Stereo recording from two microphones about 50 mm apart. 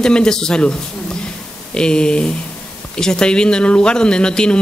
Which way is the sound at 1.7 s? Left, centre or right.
Centre.